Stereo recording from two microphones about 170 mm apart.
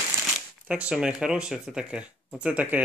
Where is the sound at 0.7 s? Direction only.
5° right (ahead or behind).